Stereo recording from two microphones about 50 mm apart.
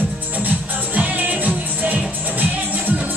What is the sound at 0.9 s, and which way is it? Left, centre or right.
Music, right.